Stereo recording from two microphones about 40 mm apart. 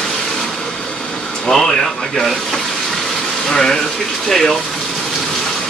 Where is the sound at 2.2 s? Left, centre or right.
Centre.